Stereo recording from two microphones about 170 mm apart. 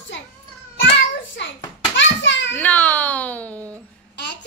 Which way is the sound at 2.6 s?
10° left (ahead or behind).